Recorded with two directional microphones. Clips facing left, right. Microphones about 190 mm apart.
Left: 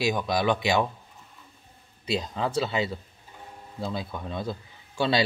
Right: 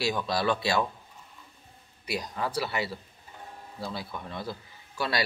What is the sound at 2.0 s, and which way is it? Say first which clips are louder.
Speech: left 4 dB; 25° left (ahead or behind).